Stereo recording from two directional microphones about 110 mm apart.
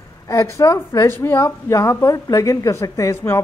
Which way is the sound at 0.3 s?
30° left (ahead or behind).